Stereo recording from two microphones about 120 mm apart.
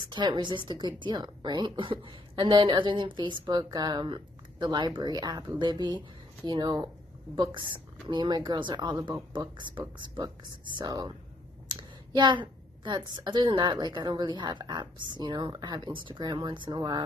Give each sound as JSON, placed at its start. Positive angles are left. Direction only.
{"t": 0.1, "sound": "speech", "side_deg": -40}